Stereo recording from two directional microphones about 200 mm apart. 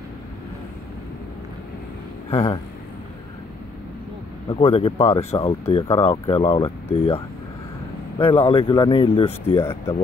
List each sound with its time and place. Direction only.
2.3 s speech: 25° left (ahead or behind)
4.5 s speech: 30° left (ahead or behind)
9.6 s speech: 10° left (ahead or behind)